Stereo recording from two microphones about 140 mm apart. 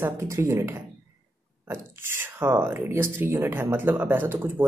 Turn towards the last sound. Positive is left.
turn(degrees=-15)  # may be behind; listen again after turning